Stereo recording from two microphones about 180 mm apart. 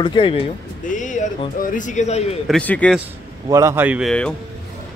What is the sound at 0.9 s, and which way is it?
A man's voice, 45° left (ahead or behind).